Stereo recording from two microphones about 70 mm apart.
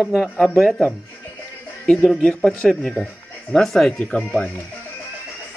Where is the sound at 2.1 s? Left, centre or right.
Centre.